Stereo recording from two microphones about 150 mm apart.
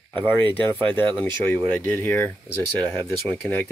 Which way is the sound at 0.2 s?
15° left (ahead or behind).